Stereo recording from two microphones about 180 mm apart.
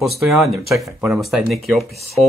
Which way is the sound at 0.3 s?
Centre (ahead or behind).